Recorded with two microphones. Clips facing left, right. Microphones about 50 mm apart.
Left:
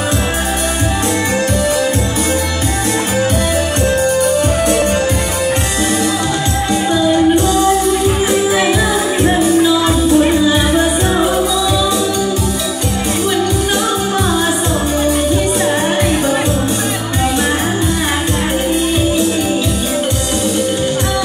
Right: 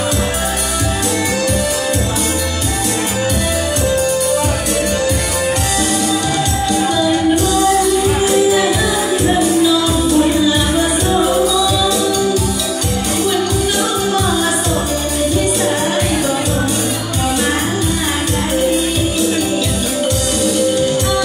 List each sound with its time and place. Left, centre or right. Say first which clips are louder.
8.3 s music: even; left